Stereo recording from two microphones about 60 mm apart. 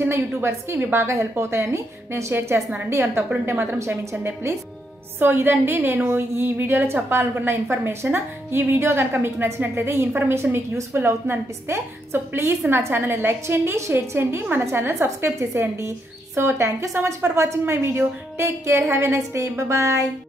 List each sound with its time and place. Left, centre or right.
0.1 s a woman's voice: right
3.4 s a woman's voice: right
3.7 s a woman's voice: right
5.2 s a woman's voice: right
15.0 s a woman's voice: right